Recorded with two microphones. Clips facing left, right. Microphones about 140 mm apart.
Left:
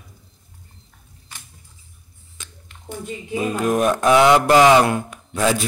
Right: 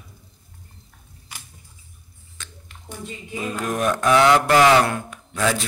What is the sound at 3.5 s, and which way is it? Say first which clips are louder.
Speech: left 4 dB; 15° left (ahead or behind).